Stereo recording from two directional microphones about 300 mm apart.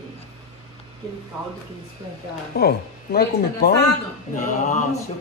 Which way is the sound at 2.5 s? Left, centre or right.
Left.